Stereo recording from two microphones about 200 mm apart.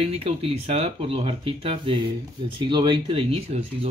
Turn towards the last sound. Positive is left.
turn(degrees=-30)  # may be behind; listen again after turning